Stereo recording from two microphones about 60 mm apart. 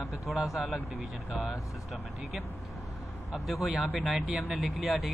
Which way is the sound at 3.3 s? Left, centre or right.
Centre.